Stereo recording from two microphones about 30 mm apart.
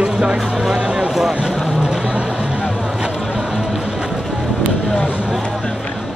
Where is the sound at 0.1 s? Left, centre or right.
Right.